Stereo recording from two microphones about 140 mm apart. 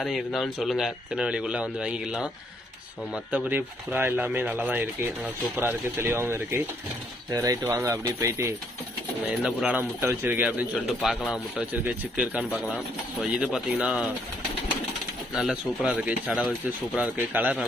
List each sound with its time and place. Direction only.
0.0 s speech: centre (ahead or behind)
3.3 s speech: 10° right (ahead or behind)
9.4 s speech: 5° right (ahead or behind)
10.9 s speech: centre (ahead or behind)
15.3 s speech: 5° right (ahead or behind)